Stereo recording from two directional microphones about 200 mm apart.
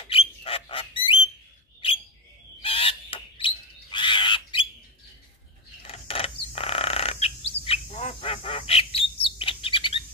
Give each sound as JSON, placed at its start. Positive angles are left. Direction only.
{"t": 0.0, "sound": "bird", "side_deg": 30}
{"t": 2.6, "sound": "bird", "side_deg": 25}
{"t": 5.8, "sound": "mechanisms", "side_deg": 30}
{"t": 6.5, "sound": "bird", "side_deg": 30}